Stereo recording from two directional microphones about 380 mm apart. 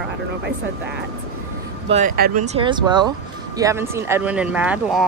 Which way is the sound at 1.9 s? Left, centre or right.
Right.